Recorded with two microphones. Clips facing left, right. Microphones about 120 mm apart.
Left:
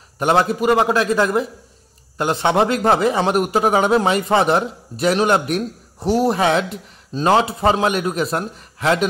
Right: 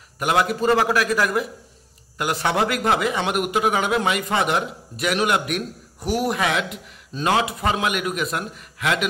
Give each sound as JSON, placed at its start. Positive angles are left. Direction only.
{"t": 0.2, "sound": "a man's voice", "side_deg": 30}
{"t": 0.6, "sound": "a man's voice", "side_deg": 20}